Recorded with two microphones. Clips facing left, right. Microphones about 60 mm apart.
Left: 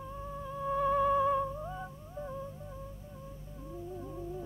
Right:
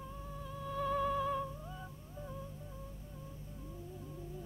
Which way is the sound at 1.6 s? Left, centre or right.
Left.